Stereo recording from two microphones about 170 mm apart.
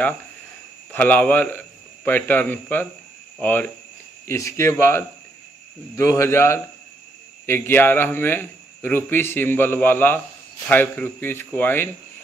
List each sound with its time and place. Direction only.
0.9 s a man's voice: 10° left (ahead or behind)